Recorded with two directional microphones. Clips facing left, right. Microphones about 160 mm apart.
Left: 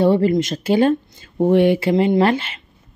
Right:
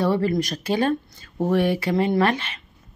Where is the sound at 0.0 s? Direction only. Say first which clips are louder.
Left 6 dB; 25° left (ahead or behind).